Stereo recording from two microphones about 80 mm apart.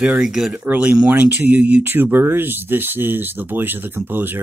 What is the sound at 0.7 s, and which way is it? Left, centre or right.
Speech, centre.